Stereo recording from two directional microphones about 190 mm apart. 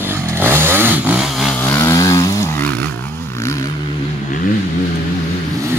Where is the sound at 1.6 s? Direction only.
15° left (ahead or behind).